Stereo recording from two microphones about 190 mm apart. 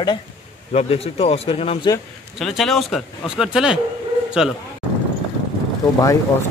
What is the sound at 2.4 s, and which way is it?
A man's voice, centre (ahead or behind).